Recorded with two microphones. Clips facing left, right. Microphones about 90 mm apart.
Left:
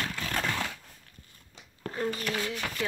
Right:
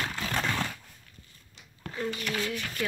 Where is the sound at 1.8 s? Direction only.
35° left (ahead or behind).